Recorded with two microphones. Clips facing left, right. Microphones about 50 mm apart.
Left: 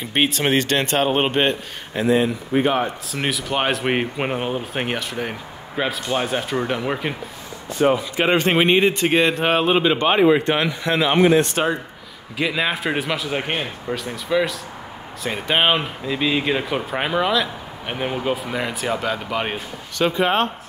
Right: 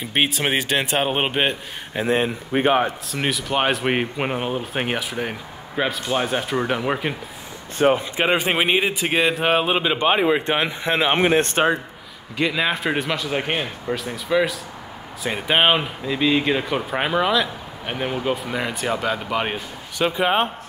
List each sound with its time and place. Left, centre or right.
0.0 s speech: centre
2.0 s a man's voice: right
3.1 s speech: centre
7.7 s a man's voice: right
8.2 s speech: centre
10.7 s speech: right
12.4 s speech: centre